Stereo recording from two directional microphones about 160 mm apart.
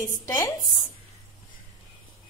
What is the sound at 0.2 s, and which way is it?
Speech, 20° left (ahead or behind).